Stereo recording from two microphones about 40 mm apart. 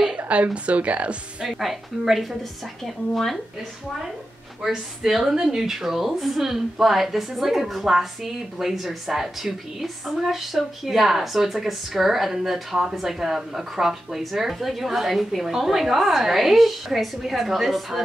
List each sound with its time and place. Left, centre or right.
0.3 s speech: right
1.4 s speech: centre
2.8 s speech: centre
4.6 s speech: centre